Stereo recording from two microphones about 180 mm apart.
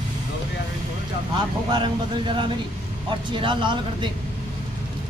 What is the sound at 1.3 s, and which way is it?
Speech, 25° right (ahead or behind).